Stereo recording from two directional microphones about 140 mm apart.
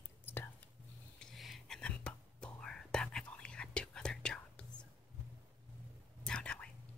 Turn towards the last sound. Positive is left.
turn(degrees=10)  # may be behind; listen again after turning